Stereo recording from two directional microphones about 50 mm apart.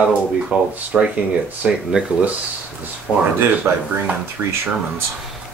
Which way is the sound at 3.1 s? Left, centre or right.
Centre.